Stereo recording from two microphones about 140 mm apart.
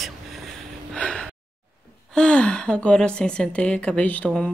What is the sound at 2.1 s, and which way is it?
A woman's voice, 5° left (ahead or behind).